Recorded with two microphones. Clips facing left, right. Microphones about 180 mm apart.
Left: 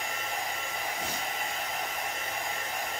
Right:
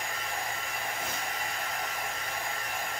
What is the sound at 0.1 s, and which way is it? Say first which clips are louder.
Hair dryer: left 1 dB; 20° left (ahead or behind).